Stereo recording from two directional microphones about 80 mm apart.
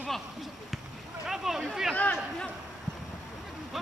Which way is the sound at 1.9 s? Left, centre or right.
Centre.